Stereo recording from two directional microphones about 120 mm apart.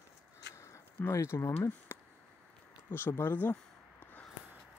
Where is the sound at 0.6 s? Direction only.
25° left (ahead or behind).